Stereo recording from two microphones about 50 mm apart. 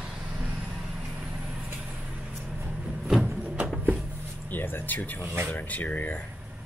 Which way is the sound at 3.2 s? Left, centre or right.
Centre.